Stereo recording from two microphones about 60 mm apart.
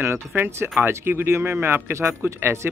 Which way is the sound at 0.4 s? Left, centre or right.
Right.